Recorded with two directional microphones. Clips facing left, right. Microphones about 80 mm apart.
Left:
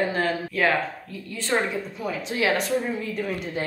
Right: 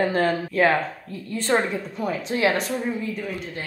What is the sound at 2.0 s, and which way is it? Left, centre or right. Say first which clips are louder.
Speech: right 2 dB; right.